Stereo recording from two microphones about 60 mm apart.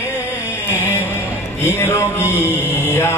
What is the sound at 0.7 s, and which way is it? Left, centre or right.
Music, left.